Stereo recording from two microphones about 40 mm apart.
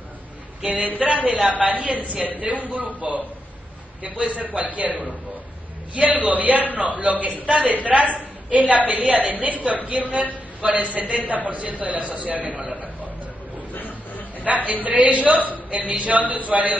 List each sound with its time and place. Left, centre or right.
0.7 s a man's voice: right
4.0 s a man's voice: right
13.7 s a sound: left
14.4 s a man's voice: right